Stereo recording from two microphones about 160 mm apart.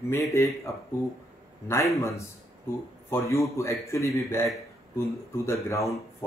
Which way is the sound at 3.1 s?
20° left (ahead or behind).